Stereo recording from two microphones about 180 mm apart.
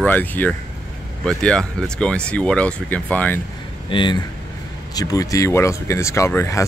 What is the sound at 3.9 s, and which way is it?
Speech, 25° left (ahead or behind).